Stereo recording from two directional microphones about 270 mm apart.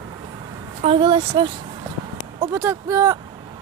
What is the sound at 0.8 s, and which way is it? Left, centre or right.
Speech, centre.